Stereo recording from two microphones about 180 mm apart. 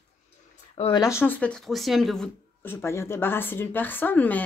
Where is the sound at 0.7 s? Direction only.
30° left (ahead or behind).